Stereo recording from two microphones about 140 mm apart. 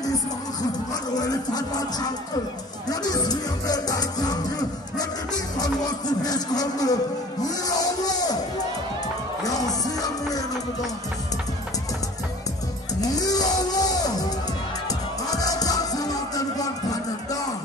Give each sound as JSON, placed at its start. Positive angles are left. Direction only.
{"t": 1.1, "sound": "music", "side_deg": 30}
{"t": 9.4, "sound": "music", "side_deg": 25}
{"t": 13.0, "sound": "music", "side_deg": 25}